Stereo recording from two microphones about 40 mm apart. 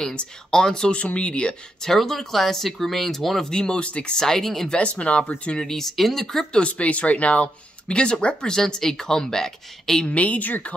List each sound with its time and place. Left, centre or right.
0.5 s speech: centre
0.9 s speech: left
1.8 s speech: centre
3.4 s speech: centre
4.3 s speech: centre
4.6 s speech: left
5.6 s speech: centre
6.5 s speech: left
7.9 s speech: left
10.0 s speech: left